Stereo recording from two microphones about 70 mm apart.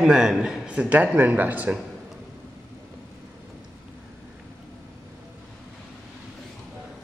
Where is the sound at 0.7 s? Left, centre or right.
Centre.